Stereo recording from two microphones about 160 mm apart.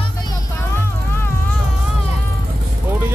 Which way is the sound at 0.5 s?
15° left (ahead or behind).